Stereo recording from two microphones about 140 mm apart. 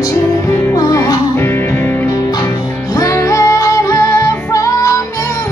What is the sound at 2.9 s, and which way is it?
Music, 20° left (ahead or behind).